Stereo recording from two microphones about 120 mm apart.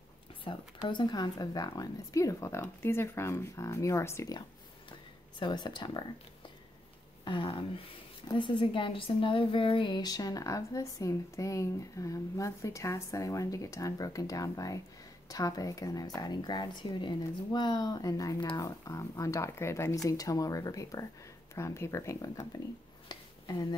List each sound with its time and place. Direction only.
0.8 s a woman's voice: 40° left (ahead or behind); by 4.4 s 25° left (ahead or behind)
5.4 s speech: 40° left (ahead or behind)
7.2 s a woman's voice: 45° left (ahead or behind); by 22.5 s 25° left (ahead or behind)
23.0 s a sound: 30° left (ahead or behind)